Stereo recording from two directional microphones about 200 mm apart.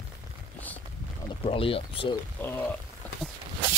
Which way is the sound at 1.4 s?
25° left (ahead or behind).